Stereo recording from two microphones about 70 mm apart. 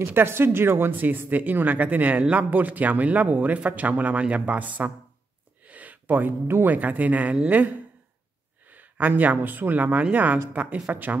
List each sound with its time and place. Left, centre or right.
0.1 s speech: right